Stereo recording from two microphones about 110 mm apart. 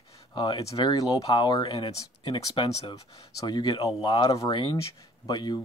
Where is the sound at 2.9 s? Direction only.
35° left (ahead or behind).